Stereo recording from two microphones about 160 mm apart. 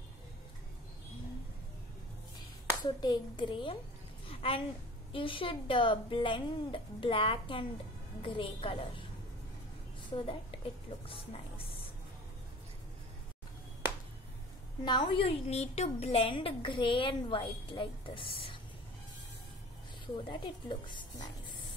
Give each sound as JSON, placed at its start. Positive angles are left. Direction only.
{"t": 3.0, "sound": "a woman's voice", "side_deg": 30}
{"t": 4.3, "sound": "a sound", "side_deg": 35}
{"t": 5.1, "sound": "a woman's voice", "side_deg": 30}
{"t": 10.1, "sound": "a woman's voice", "side_deg": 30}
{"t": 14.9, "sound": "a woman's voice", "side_deg": 30}
{"t": 20.2, "sound": "a woman's voice", "side_deg": 30}